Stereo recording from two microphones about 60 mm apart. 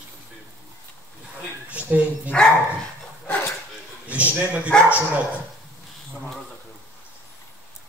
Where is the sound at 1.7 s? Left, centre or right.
Right.